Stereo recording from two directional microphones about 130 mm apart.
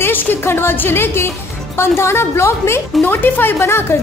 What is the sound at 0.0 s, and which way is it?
A woman's voice, 15° left (ahead or behind).